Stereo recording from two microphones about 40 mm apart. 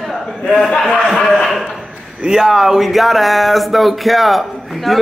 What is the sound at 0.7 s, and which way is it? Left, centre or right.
Speech, centre.